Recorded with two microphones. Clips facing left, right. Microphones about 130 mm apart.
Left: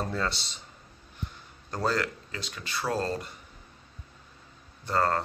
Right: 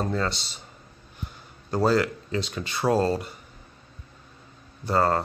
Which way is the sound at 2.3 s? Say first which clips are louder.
Right 8 dB; 25° right (ahead or behind).